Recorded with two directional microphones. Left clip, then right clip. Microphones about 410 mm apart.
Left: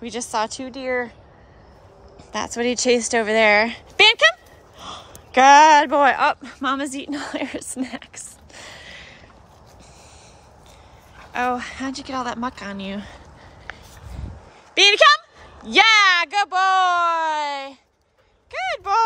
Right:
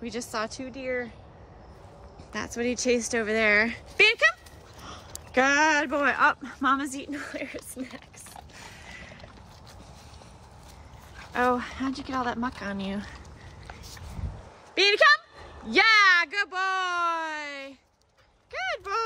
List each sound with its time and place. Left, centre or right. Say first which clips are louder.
0.0 s speech: left 8 dB; centre
2.3 s speech: left 7 dB; centre
8.7 s a sound: left 5 dB; centre
11.3 s speech: left 2 dB; centre
14.7 s a woman's voice: left 6 dB; centre